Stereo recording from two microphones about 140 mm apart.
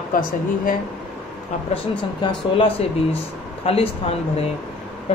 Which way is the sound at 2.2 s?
40° left (ahead or behind).